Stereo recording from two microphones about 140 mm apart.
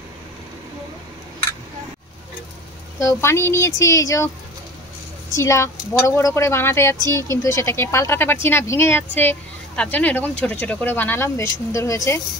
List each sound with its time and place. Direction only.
3.0 s a woman's voice: 20° left (ahead or behind)
5.3 s a woman's voice: 20° left (ahead or behind)